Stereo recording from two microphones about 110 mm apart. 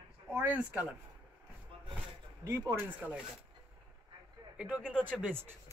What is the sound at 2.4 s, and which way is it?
Speech, 25° right (ahead or behind).